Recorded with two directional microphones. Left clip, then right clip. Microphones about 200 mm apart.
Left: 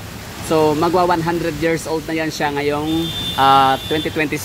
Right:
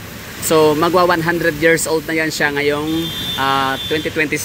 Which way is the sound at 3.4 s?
20° left (ahead or behind).